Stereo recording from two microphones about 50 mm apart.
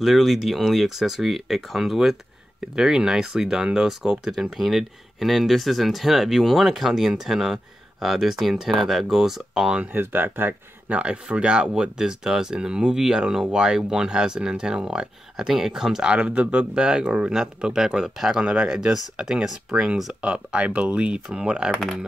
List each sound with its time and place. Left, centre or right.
0.0 s speech: centre
2.7 s speech: centre
9.9 s speech: right
10.9 s speech: right
16.0 s speech: right
18.4 s speech: right